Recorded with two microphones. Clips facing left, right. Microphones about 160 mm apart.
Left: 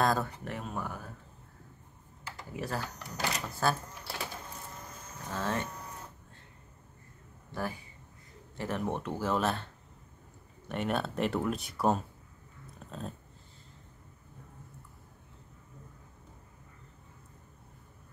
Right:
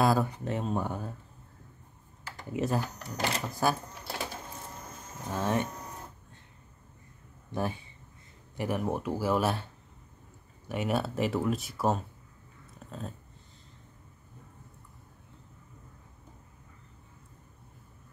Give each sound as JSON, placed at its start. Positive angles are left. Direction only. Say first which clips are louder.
{"t": 0.0, "sound": "a sound", "louder": "right 3 dB", "side_deg": -10}
{"t": 0.5, "sound": "speech", "louder": "right 6 dB", "side_deg": -25}
{"t": 2.5, "sound": "speech", "louder": "right 6 dB", "side_deg": -20}
{"t": 5.3, "sound": "speech", "louder": "right 4 dB", "side_deg": -20}
{"t": 7.5, "sound": "speech", "louder": "right 4 dB", "side_deg": -20}
{"t": 8.5, "sound": "speech", "louder": "right 3 dB", "side_deg": -10}
{"t": 10.7, "sound": "speech", "louder": "right 2 dB", "side_deg": -5}
{"t": 12.7, "sound": "dog", "louder": "even", "side_deg": 0}